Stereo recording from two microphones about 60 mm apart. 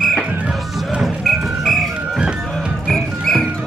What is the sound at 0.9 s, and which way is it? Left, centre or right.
Music, centre.